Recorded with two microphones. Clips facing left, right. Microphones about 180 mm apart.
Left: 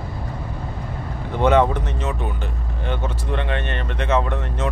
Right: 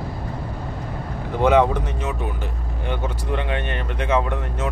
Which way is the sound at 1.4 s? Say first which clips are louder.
Even; 10° right (ahead or behind).